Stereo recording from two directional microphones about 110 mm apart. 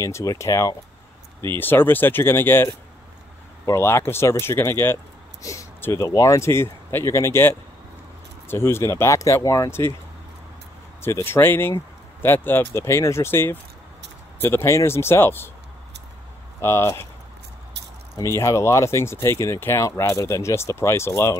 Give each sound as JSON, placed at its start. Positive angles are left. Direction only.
{"t": 0.0, "sound": "speech", "side_deg": 30}
{"t": 1.4, "sound": "speech", "side_deg": 20}
{"t": 11.0, "sound": "speech", "side_deg": 20}
{"t": 16.6, "sound": "speech", "side_deg": 25}
{"t": 18.1, "sound": "speech", "side_deg": 25}